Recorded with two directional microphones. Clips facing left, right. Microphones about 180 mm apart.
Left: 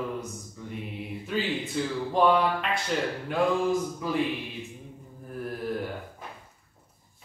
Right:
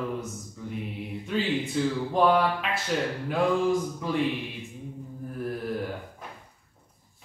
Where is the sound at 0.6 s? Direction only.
Centre (ahead or behind).